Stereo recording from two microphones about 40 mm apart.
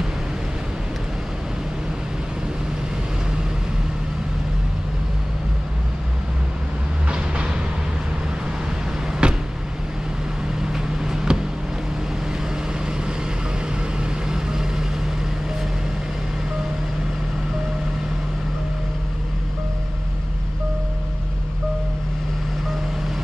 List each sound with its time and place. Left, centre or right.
9.2 s vehicle: right
10.6 s vehicle: centre
14.3 s vehicle: centre